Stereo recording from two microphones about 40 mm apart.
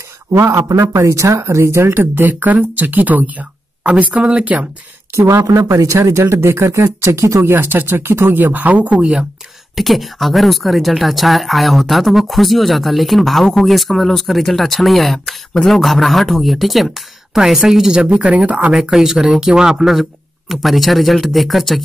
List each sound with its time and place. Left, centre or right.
1.3 s speech: right
4.0 s speech: right
5.1 s speech: right
7.4 s speech: right
8.0 s speech: right
8.9 s speech: right
9.8 s speech: centre
17.9 s speech: right
18.7 s speech: centre
19.9 s speech: centre